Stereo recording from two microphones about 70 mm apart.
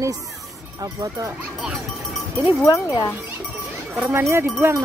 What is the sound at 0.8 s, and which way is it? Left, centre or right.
Speech, right.